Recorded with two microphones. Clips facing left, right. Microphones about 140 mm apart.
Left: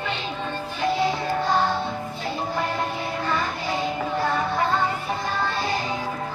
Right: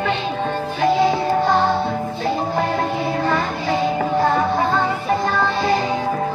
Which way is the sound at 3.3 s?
60° right (ahead or behind).